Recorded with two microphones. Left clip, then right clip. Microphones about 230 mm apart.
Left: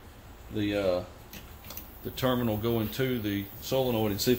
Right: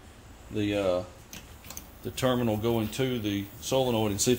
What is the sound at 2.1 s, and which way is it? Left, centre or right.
Speech, right.